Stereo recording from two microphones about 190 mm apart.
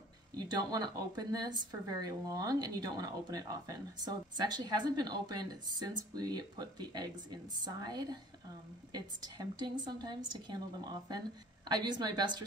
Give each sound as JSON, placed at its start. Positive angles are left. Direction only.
{"t": 0.4, "sound": "speech", "side_deg": -20}